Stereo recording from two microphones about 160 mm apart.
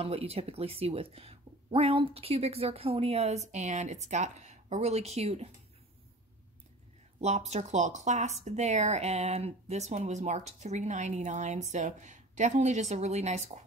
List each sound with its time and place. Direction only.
0.0 s speech: 40° right (ahead or behind)
7.2 s speech: 45° right (ahead or behind)